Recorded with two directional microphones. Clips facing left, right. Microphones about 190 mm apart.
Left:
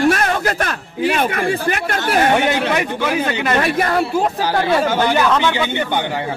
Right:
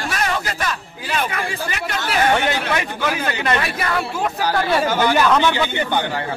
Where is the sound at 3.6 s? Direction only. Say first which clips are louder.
Left 6 dB; 40° left (ahead or behind).